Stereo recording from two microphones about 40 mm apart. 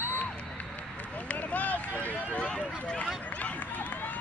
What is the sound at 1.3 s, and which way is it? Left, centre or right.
Run, left.